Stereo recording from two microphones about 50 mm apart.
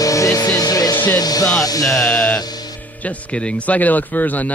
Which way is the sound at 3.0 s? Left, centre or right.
Left.